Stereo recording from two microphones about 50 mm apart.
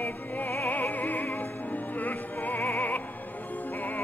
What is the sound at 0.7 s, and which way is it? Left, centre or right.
Opera, left.